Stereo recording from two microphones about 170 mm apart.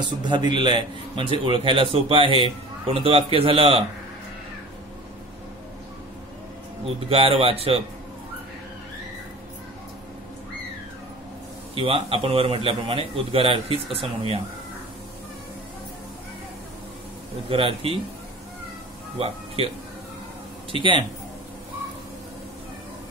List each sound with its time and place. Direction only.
0.0 s a man's voice: 25° right (ahead or behind)
6.8 s speech: 35° right (ahead or behind)
11.8 s speech: 30° right (ahead or behind)
17.5 s speech: 35° right (ahead or behind)
19.1 s speech: 35° right (ahead or behind)
20.7 s a man's voice: 30° right (ahead or behind)